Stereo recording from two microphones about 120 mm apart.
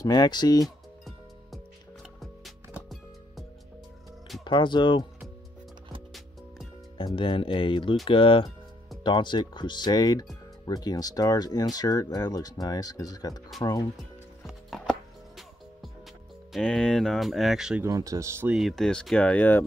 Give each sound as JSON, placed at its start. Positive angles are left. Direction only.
{"t": 0.0, "sound": "speech", "side_deg": 35}
{"t": 4.5, "sound": "speech", "side_deg": 40}
{"t": 7.2, "sound": "speech", "side_deg": 45}
{"t": 14.4, "sound": "music", "side_deg": 0}
{"t": 16.5, "sound": "speech", "side_deg": 5}
{"t": 17.8, "sound": "speech", "side_deg": -30}
{"t": 18.5, "sound": "speech", "side_deg": 0}